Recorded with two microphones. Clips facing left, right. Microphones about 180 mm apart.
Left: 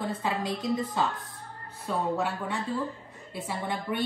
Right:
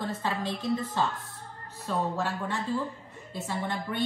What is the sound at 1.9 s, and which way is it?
Speech, 5° left (ahead or behind).